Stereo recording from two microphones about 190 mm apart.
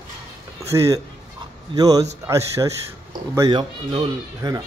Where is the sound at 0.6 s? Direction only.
15° right (ahead or behind).